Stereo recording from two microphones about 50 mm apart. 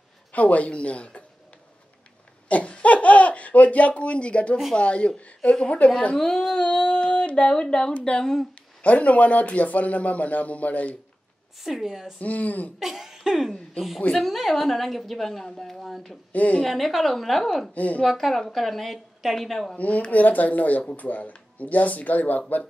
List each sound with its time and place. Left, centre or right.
0.3 s speech: left
2.4 s speech: left
6.1 s speech: centre
6.6 s a sound: left
8.0 s speech: centre
8.8 s speech: left
11.6 s a woman's voice: centre
12.2 s speech: left
12.7 s a woman's voice: centre
16.3 s speech: left
16.6 s a woman's voice: centre
17.7 s speech: left
18.0 s a woman's voice: centre
19.7 s speech: left